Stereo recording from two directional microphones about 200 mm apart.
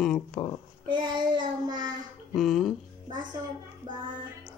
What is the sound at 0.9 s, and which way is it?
Child singing, 20° right (ahead or behind).